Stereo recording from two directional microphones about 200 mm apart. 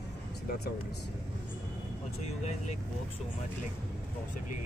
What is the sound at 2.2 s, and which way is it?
Speech, 35° left (ahead or behind).